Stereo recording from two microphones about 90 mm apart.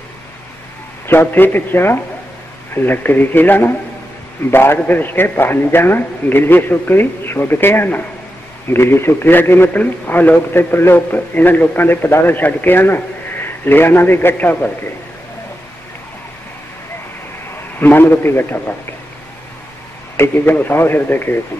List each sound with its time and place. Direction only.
1.0 s a man's voice: 20° left (ahead or behind)
17.7 s a man's voice: 20° left (ahead or behind)
20.2 s a man's voice: 20° left (ahead or behind)